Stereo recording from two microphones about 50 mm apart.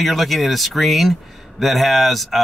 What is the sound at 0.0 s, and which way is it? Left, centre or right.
Speech, centre.